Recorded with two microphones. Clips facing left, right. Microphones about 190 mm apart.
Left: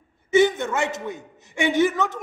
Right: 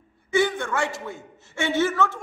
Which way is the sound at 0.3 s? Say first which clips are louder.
Left 4 dB; 20° left (ahead or behind).